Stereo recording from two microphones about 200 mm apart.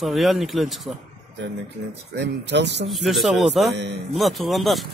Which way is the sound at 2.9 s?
Centre (ahead or behind).